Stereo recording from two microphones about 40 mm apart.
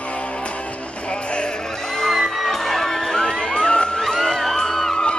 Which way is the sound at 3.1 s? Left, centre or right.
Left.